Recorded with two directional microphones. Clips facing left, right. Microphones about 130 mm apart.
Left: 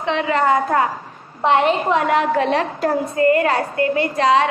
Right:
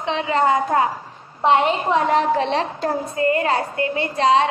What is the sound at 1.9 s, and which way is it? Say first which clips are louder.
A woman's voice: left 1 dB; 30° right (ahead or behind).